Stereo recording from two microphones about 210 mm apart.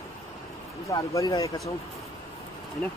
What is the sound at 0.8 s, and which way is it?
Speech, 15° left (ahead or behind).